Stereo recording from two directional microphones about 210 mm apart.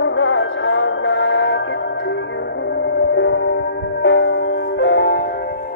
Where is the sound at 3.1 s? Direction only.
60° left (ahead or behind).